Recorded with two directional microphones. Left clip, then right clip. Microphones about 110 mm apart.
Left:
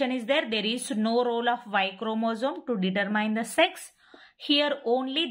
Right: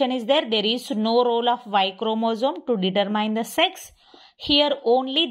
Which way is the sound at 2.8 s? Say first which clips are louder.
Right 3 dB; 30° right (ahead or behind).